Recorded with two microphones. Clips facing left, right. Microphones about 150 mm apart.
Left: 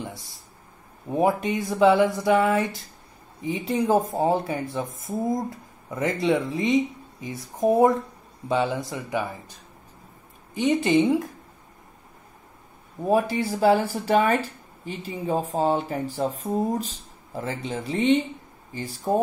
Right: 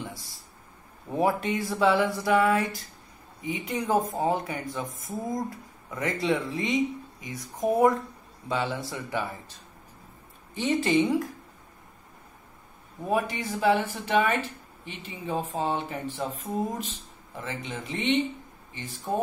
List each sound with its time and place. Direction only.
0.0 s a sound: 20° left (ahead or behind)
1.1 s speech: 20° left (ahead or behind)
10.5 s speech: 20° left (ahead or behind)
13.0 s speech: 35° left (ahead or behind)